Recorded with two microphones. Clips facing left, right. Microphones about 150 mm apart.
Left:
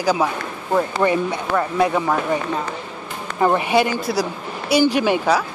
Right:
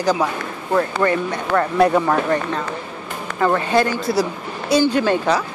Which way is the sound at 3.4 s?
15° left (ahead or behind).